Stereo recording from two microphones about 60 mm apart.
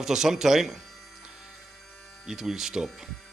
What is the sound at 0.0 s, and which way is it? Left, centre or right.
Speech, centre.